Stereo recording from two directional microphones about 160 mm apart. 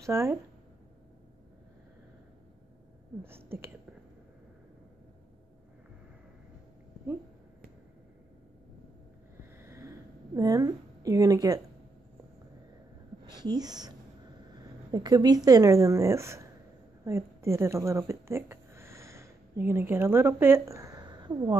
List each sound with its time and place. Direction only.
0.0 s speech: 15° right (ahead or behind)
3.3 s speech: 15° right (ahead or behind)
9.7 s a sound: 20° right (ahead or behind)
13.2 s speech: 25° right (ahead or behind)